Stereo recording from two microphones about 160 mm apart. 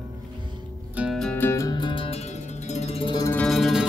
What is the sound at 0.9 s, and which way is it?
Music, 10° right (ahead or behind).